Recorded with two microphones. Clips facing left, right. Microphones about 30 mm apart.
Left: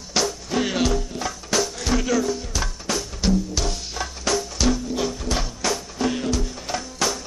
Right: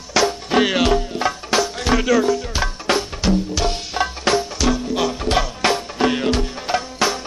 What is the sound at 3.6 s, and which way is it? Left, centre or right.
Music, right.